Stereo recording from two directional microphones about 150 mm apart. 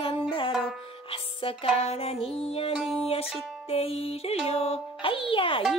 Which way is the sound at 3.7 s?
40° left (ahead or behind).